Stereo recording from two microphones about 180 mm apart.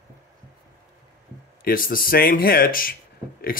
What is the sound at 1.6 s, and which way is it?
Speech, 50° left (ahead or behind).